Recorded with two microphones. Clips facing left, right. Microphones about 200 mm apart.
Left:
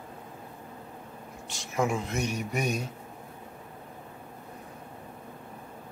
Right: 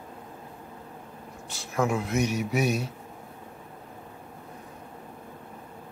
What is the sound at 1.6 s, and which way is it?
Speech, centre (ahead or behind).